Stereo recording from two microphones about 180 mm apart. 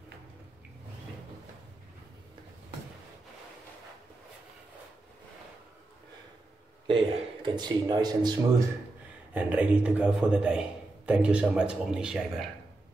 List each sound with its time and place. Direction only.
6.9 s speech: 25° right (ahead or behind)
9.3 s a man's voice: 10° right (ahead or behind)